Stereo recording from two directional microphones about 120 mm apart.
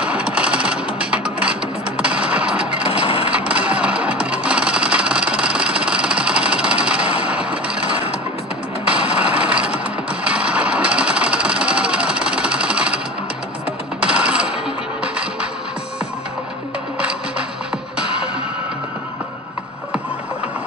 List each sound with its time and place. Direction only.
0.0 s music: 10° right (ahead or behind)
2.9 s wood: 50° left (ahead or behind)
3.3 s music: 10° right (ahead or behind)
8.8 s a sound: 10° right (ahead or behind)
10.2 s sewing machine: 10° right (ahead or behind)
14.0 s music: 10° right (ahead or behind)